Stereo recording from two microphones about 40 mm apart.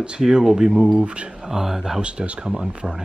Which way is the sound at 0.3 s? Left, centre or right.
Centre.